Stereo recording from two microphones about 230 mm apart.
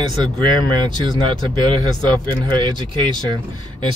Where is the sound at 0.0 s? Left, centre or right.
Centre.